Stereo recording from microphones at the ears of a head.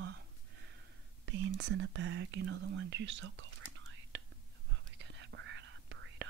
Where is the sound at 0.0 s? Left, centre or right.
Right.